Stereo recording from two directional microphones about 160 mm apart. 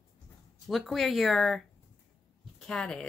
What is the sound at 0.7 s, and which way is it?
Speech, centre (ahead or behind).